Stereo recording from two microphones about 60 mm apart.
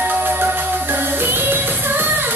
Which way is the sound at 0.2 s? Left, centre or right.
Right.